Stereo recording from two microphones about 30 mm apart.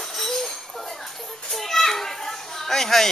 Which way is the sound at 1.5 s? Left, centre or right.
Centre.